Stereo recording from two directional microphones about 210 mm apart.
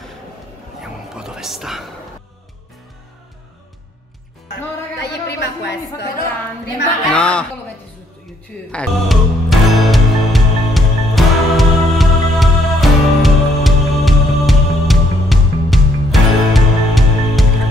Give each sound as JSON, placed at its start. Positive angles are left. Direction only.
{"t": 0.7, "sound": "a sound", "side_deg": -5}
{"t": 5.0, "sound": "a woman's voice", "side_deg": 55}
{"t": 7.1, "sound": "a man's voice", "side_deg": 5}
{"t": 8.7, "sound": "music", "side_deg": 0}